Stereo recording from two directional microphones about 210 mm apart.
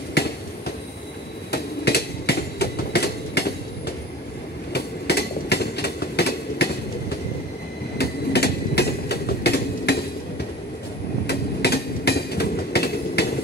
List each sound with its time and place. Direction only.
0.2 s a sound: 50° left (ahead or behind)
1.5 s train: 50° left (ahead or behind)
11.2 s train: 50° left (ahead or behind)